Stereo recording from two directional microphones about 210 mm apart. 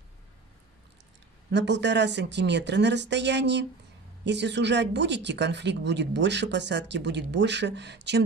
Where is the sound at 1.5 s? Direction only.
55° right (ahead or behind).